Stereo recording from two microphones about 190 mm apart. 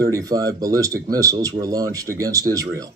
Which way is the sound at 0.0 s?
20° right (ahead or behind).